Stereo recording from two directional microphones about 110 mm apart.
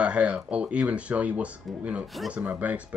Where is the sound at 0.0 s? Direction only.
10° right (ahead or behind).